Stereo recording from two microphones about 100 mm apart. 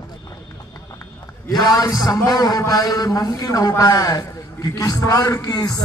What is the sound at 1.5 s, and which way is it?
A man's voice, 40° left (ahead or behind).